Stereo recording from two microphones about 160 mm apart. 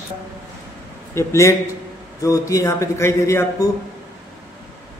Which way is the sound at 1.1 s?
20° left (ahead or behind).